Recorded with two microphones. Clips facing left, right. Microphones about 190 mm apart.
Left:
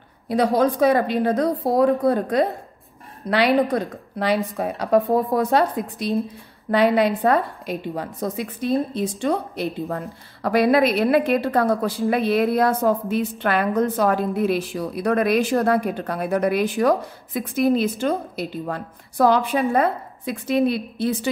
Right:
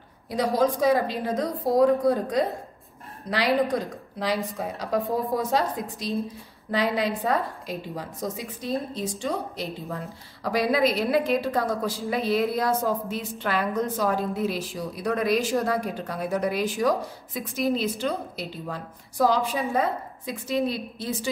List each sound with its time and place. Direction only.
0.3 s a woman's voice: 60° left (ahead or behind)